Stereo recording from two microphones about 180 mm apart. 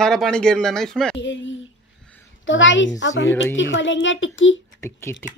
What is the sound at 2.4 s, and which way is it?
A child's voice, 90° left.